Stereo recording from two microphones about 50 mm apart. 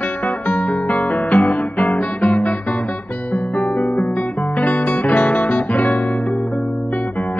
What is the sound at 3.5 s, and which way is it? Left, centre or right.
Music, left.